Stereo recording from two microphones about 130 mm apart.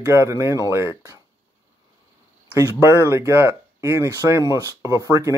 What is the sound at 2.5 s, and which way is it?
Speech, 20° right (ahead or behind).